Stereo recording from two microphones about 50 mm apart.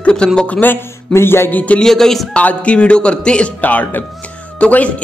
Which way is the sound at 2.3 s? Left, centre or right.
Left.